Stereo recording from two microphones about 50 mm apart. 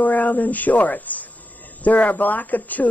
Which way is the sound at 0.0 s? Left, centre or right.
Left.